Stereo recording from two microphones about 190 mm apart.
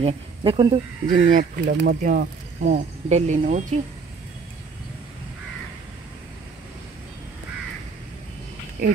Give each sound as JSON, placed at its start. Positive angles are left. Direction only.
{"t": 0.0, "sound": "speech", "side_deg": -25}
{"t": 1.2, "sound": "speech", "side_deg": -45}